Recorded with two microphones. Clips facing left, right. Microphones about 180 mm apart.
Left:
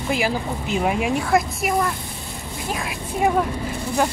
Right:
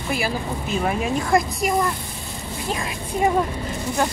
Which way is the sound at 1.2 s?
5° left (ahead or behind).